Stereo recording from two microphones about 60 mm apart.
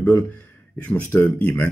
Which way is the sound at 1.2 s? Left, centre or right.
Left.